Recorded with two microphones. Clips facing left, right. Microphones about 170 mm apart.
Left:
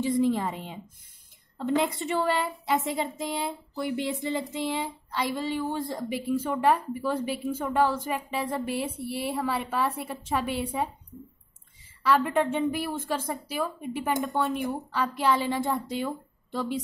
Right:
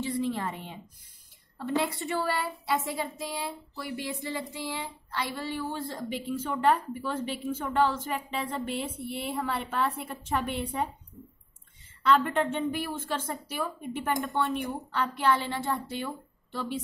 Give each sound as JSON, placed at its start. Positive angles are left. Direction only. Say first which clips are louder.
{"t": 0.3, "sound": "a woman's voice", "louder": "left 5 dB", "side_deg": 15}
{"t": 12.0, "sound": "a woman's voice", "louder": "left 1 dB", "side_deg": 5}